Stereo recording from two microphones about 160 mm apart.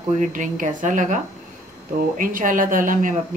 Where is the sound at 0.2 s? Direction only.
50° right (ahead or behind).